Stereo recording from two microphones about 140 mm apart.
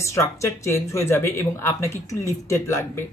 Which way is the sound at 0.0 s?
20° left (ahead or behind).